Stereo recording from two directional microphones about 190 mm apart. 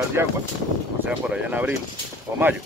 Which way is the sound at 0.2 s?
10° right (ahead or behind).